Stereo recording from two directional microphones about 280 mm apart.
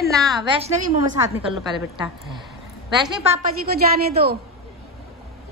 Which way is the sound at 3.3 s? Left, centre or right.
Right.